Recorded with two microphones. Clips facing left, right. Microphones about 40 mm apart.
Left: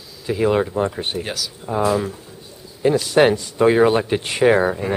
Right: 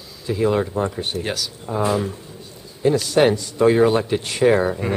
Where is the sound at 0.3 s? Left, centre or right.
Left.